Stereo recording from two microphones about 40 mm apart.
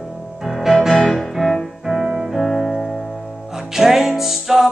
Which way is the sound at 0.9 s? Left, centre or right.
Centre.